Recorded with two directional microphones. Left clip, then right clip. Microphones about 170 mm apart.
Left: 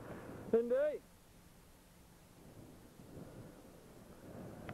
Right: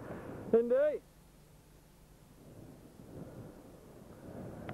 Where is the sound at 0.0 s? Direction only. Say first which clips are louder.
Right 5 dB; 25° left (ahead or behind).